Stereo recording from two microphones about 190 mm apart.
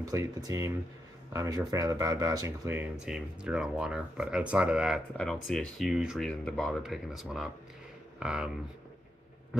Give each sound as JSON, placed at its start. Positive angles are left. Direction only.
{"t": 0.0, "sound": "speech", "side_deg": -20}